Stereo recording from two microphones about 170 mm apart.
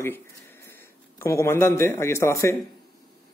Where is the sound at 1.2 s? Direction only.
15° left (ahead or behind).